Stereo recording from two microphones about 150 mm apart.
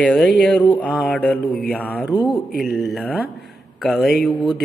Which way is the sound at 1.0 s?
10° left (ahead or behind).